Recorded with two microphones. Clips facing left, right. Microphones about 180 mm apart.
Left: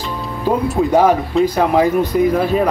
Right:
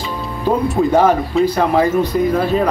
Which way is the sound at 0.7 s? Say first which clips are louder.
Even; 5° left (ahead or behind).